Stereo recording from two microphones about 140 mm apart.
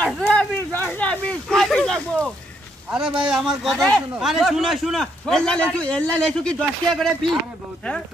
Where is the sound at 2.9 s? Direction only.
5° right (ahead or behind).